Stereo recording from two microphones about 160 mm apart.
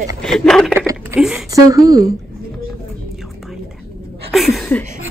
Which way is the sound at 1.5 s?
20° right (ahead or behind).